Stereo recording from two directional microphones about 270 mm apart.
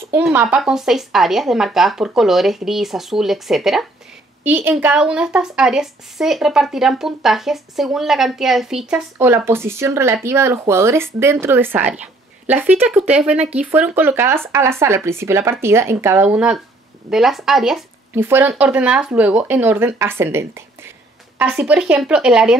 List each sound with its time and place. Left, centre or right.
0.1 s speech: centre